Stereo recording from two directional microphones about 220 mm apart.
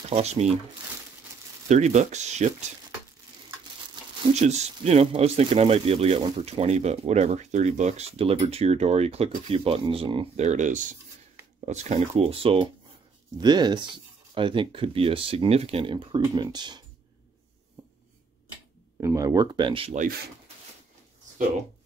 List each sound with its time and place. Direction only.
0.1 s speech: 30° right (ahead or behind)
1.7 s speech: 30° right (ahead or behind)
4.4 s speech: 30° right (ahead or behind)
18.9 s speech: 15° right (ahead or behind)